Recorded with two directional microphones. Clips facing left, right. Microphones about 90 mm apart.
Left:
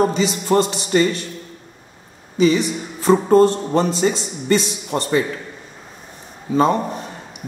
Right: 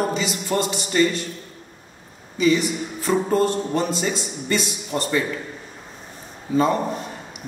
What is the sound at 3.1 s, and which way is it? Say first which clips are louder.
Speech: left 7 dB; 30° left (ahead or behind).